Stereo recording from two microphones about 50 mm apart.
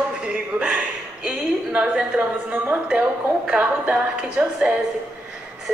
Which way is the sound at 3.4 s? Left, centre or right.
Right.